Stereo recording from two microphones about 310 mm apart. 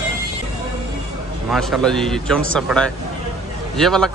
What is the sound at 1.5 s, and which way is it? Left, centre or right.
Speech, centre.